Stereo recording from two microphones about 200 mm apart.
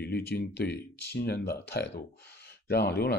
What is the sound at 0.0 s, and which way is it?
Speech, 55° left (ahead or behind).